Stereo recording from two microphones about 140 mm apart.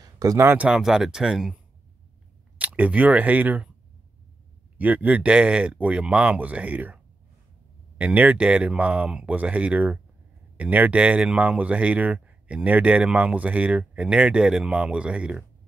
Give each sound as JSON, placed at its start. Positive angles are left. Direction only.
{"t": 0.0, "sound": "speech", "side_deg": -25}
{"t": 0.7, "sound": "speech", "side_deg": -5}
{"t": 2.6, "sound": "speech", "side_deg": -10}
{"t": 4.7, "sound": "speech", "side_deg": -10}
{"t": 8.0, "sound": "speech", "side_deg": -10}